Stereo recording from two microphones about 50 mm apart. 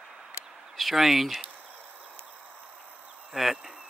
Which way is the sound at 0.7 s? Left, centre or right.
Centre.